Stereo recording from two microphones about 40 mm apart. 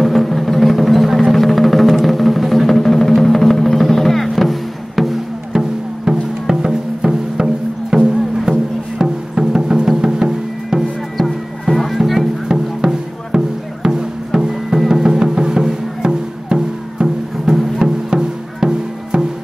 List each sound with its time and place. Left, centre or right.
0.0 s music: centre
5.5 s music: centre
10.8 s music: centre
11.7 s music: centre
12.4 s music: centre